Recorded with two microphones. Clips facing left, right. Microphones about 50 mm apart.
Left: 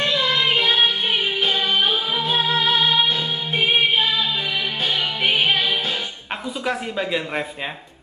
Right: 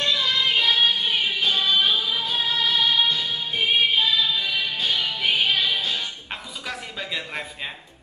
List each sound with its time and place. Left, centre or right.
0.0 s music: left
6.6 s speech: centre